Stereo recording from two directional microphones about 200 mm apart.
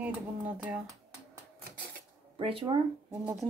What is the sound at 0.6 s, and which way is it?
Speech, 5° right (ahead or behind).